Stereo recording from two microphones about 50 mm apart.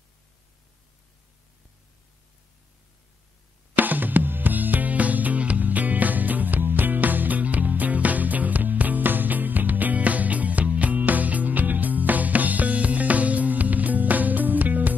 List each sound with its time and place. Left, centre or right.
3.7 s music: right